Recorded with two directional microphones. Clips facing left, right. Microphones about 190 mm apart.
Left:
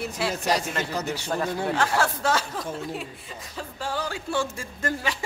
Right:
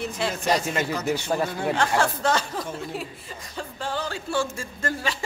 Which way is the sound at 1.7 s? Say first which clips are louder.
Right 3 dB; 5° left (ahead or behind).